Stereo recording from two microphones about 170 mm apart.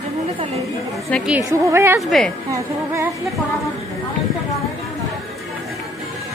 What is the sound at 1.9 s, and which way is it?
Speech, centre (ahead or behind).